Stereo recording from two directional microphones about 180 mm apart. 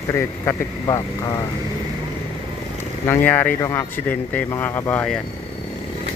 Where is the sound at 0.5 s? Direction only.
20° left (ahead or behind).